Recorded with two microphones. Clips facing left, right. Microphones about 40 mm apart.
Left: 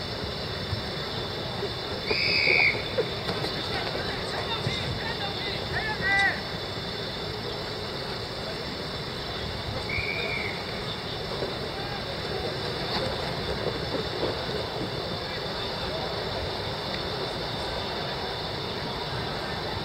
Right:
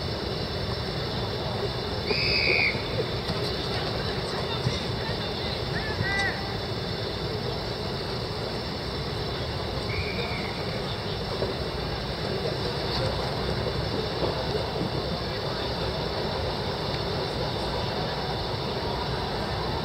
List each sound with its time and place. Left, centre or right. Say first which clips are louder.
2.0 s frog: left 1 dB; centre
6.0 s vehicle: left 5 dB; centre